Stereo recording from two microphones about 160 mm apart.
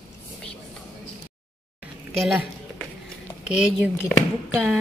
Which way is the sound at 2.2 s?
Centre (ahead or behind).